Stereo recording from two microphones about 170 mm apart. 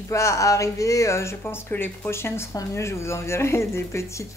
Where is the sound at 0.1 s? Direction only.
15° left (ahead or behind).